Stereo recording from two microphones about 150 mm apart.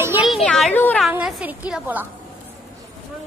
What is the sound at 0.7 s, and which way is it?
Speech, 10° left (ahead or behind).